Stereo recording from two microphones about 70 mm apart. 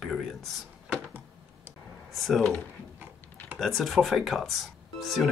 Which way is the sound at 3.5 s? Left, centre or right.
Centre.